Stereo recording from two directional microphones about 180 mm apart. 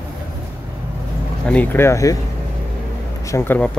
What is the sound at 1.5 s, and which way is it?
Speech, 10° left (ahead or behind).